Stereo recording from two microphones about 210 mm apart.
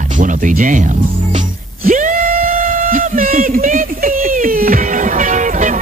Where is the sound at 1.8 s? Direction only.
40° right (ahead or behind).